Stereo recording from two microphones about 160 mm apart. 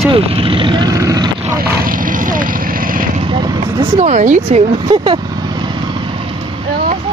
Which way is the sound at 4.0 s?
50° right (ahead or behind).